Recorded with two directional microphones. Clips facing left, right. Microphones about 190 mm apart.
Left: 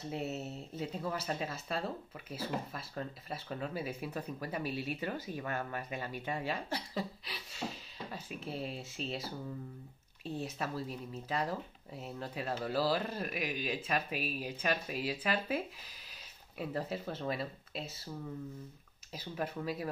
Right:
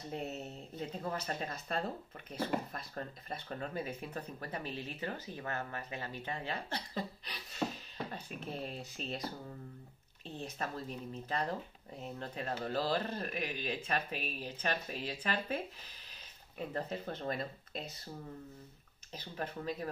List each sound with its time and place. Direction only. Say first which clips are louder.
0.1 s speech: left 2 dB; 5° left (ahead or behind)
7.6 s beatboxing: right 4 dB; 55° right (ahead or behind)
8.1 s speech: left 1 dB; centre (ahead or behind)
19.1 s speech: left 3 dB; 10° left (ahead or behind)